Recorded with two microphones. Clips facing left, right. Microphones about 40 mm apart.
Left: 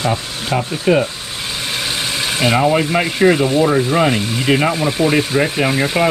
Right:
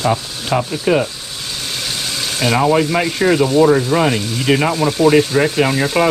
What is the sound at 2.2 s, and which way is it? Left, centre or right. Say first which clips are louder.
Frying: left 1 dB; left.